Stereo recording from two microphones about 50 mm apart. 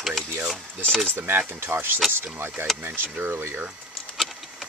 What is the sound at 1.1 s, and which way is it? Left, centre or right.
Speech, right.